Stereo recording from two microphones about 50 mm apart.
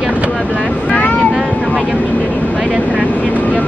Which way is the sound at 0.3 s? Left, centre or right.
Left.